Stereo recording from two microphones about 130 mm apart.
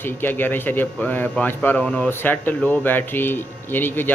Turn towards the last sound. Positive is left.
turn(degrees=15)  # may be behind; listen again after turning